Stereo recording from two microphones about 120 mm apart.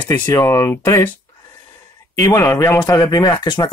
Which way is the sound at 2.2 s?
20° left (ahead or behind).